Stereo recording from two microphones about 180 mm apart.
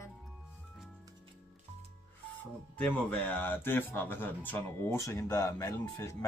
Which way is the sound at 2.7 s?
10° left (ahead or behind).